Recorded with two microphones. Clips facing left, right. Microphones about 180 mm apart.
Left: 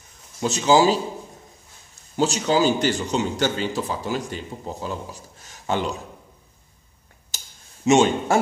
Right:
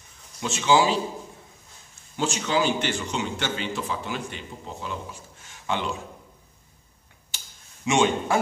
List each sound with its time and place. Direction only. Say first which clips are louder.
0.4 s a man's voice: left 4 dB; 40° left (ahead or behind)
2.1 s a man's voice: left 5 dB; 40° left (ahead or behind)
7.2 s a sound: left 2 dB; 40° left (ahead or behind)